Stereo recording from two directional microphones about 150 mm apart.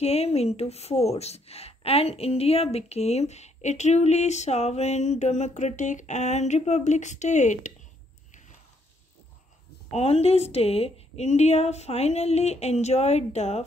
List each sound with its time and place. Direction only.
0.0 s speech: 45° left (ahead or behind)
9.8 s speech: 45° left (ahead or behind)